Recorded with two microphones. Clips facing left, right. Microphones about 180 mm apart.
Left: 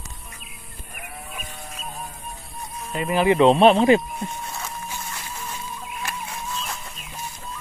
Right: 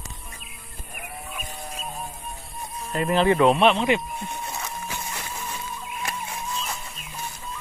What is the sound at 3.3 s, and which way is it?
Speech, 25° left (ahead or behind).